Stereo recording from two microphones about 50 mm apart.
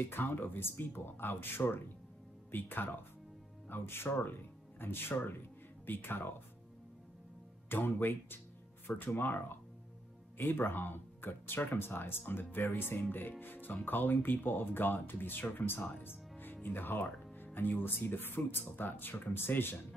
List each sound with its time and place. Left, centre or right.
0.1 s speech: left
2.5 s speech: left
7.7 s speech: left
16.0 s music: left
16.6 s speech: left